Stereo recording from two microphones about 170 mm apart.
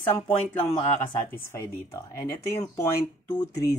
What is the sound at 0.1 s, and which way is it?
Speech, 15° left (ahead or behind).